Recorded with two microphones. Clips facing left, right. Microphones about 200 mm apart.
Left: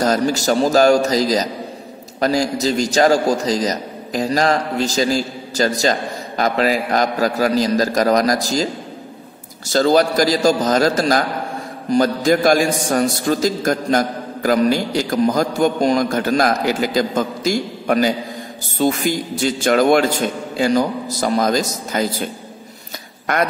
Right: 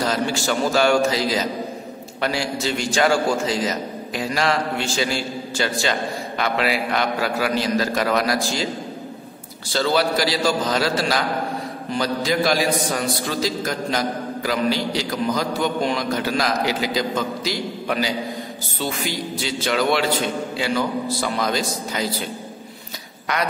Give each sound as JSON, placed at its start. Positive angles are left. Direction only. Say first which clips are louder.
{"t": 0.0, "sound": "a man's voice", "louder": "left 5 dB", "side_deg": 40}
{"t": 9.7, "sound": "a man's voice", "louder": "left 6 dB", "side_deg": 45}